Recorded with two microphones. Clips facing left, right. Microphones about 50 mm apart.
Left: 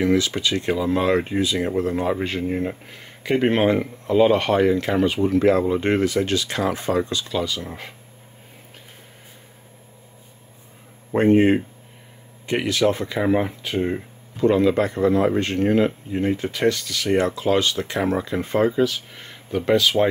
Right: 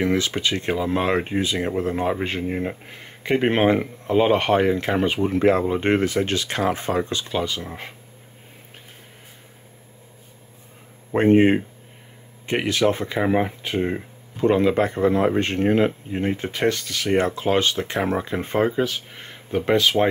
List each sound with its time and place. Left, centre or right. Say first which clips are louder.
0.0 s speech: left 2 dB; right
2.4 s speech: left 1 dB; centre; by 7.6 s right
11.1 s speech: even; right
14.3 s speech: left 1 dB; right